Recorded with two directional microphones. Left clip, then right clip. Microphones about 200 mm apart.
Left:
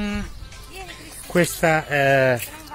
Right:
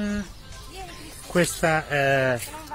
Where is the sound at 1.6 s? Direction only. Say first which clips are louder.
Left 5 dB; 40° left (ahead or behind).